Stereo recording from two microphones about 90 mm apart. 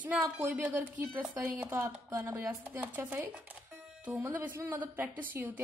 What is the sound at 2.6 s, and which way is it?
A woman's voice, 20° right (ahead or behind).